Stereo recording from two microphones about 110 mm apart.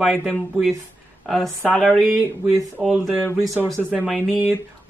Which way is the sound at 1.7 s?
Centre (ahead or behind).